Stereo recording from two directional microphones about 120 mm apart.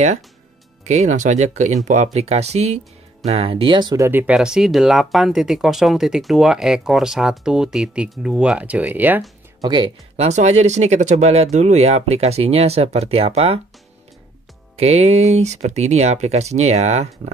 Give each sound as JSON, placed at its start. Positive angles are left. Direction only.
{"t": 0.8, "sound": "speech", "side_deg": -75}
{"t": 3.9, "sound": "speech", "side_deg": -20}
{"t": 4.4, "sound": "speech", "side_deg": -5}
{"t": 9.6, "sound": "speech", "side_deg": -40}
{"t": 10.1, "sound": "speech", "side_deg": -70}
{"t": 14.8, "sound": "speech", "side_deg": -60}